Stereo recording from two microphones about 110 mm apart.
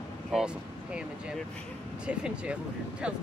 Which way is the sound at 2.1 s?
10° right (ahead or behind).